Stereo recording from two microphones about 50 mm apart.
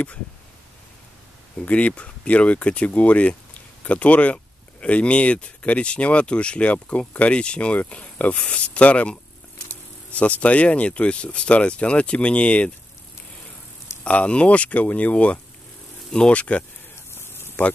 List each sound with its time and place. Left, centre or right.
1.7 s speech: left
10.1 s speech: left
14.0 s speech: left
17.1 s a sound: left